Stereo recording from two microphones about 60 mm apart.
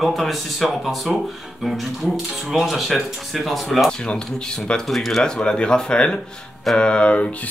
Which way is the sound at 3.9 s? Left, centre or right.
Centre.